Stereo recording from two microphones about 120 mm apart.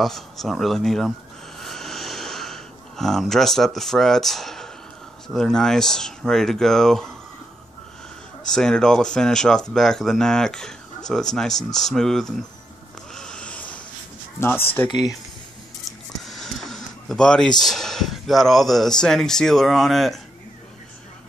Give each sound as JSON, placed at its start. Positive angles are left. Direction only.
{"t": 0.0, "sound": "speech", "side_deg": 0}
{"t": 1.6, "sound": "a sound", "side_deg": 5}
{"t": 5.3, "sound": "speech", "side_deg": 5}
{"t": 8.5, "sound": "speech", "side_deg": 5}
{"t": 13.1, "sound": "cat", "side_deg": 5}
{"t": 14.4, "sound": "speech", "side_deg": 15}
{"t": 15.8, "sound": "a sound", "side_deg": 0}
{"t": 17.6, "sound": "speech", "side_deg": 0}